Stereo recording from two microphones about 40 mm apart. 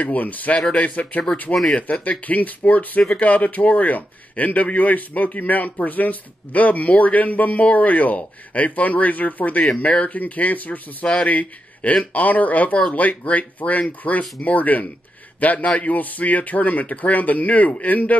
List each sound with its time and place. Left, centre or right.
0.0 s speech: left
0.6 s speech: left
0.8 s speech: left
1.5 s speech: centre
2.0 s a man's voice: left